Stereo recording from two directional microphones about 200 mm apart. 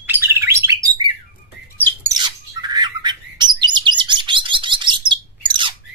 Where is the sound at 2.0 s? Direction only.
20° right (ahead or behind).